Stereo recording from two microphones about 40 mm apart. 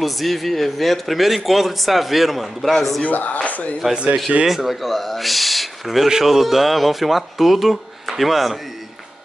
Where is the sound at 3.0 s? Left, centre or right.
Left.